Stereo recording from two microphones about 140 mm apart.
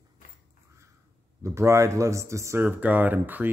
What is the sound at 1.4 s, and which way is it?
Speech, 20° right (ahead or behind).